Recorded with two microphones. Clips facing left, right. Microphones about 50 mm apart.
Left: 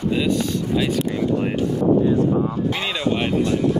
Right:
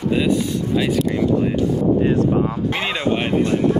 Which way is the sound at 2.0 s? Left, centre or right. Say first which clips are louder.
Right 1 dB; right.